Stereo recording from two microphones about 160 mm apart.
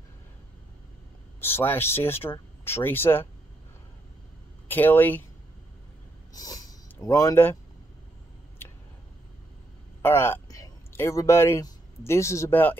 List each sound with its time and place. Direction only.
1.4 s speech: 15° left (ahead or behind)
4.6 s speech: 10° left (ahead or behind)
6.3 s speech: 20° left (ahead or behind)
10.0 s speech: 15° left (ahead or behind)